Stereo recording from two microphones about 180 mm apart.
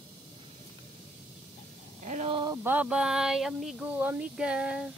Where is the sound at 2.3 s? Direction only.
25° right (ahead or behind).